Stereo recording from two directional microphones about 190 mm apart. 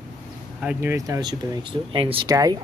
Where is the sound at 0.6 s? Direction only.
10° right (ahead or behind).